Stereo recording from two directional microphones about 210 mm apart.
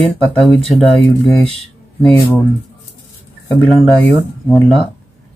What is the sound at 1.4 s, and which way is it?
Speech, 30° right (ahead or behind).